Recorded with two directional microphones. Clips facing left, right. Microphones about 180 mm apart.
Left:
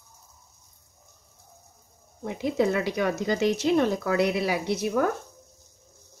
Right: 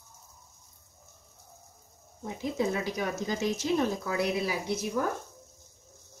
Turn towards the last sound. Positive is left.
turn(degrees=70)  # may be behind; listen again after turning